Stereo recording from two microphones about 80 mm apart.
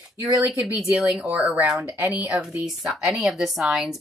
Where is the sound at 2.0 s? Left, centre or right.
Right.